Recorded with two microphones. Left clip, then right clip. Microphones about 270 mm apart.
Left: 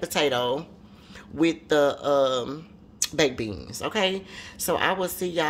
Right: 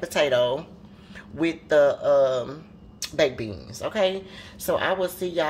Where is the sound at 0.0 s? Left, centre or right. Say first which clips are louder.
Right 3 dB; left.